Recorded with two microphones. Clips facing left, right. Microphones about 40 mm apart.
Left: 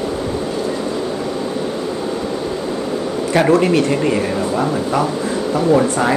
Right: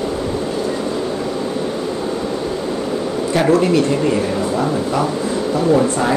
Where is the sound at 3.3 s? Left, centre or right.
Left.